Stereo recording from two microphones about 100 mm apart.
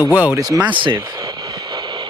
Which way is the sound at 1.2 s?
40° right (ahead or behind).